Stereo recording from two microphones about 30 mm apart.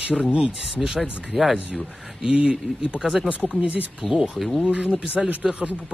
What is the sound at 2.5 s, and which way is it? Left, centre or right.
Speech, right.